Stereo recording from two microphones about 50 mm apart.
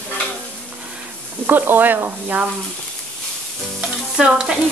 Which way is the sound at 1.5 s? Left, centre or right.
Right.